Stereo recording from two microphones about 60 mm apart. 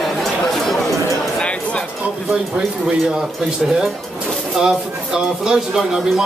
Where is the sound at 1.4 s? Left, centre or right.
Centre.